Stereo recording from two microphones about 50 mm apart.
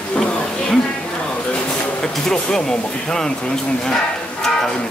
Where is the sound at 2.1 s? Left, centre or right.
Centre.